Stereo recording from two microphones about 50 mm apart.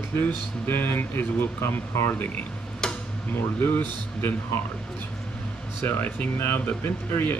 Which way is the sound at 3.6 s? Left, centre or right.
Left.